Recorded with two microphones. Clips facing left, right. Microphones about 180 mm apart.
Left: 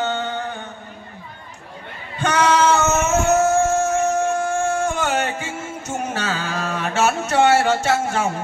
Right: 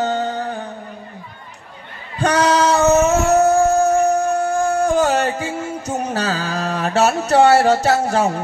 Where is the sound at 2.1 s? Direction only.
35° right (ahead or behind).